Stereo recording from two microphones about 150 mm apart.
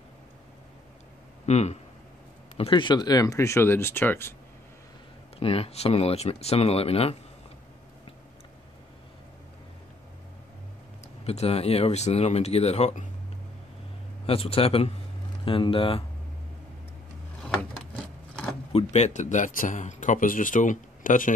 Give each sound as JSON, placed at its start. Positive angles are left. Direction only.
{"t": 1.4, "sound": "speech", "side_deg": 45}
{"t": 2.5, "sound": "speech", "side_deg": 35}
{"t": 5.4, "sound": "speech", "side_deg": 40}
{"t": 11.2, "sound": "speech", "side_deg": 40}
{"t": 14.2, "sound": "speech", "side_deg": 40}
{"t": 17.4, "sound": "a sound", "side_deg": 5}
{"t": 18.7, "sound": "speech", "side_deg": 45}